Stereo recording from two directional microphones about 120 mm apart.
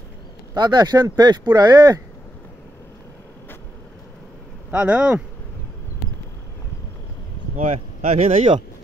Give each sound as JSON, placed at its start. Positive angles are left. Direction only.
{"t": 0.6, "sound": "speech", "side_deg": -35}
{"t": 4.6, "sound": "speech", "side_deg": -10}
{"t": 7.5, "sound": "speech", "side_deg": -80}